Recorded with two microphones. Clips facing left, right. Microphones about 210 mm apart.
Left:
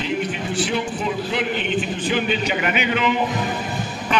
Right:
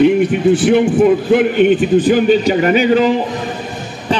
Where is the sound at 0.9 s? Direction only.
50° right (ahead or behind).